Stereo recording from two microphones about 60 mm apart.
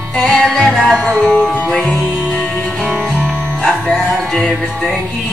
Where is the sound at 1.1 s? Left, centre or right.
Centre.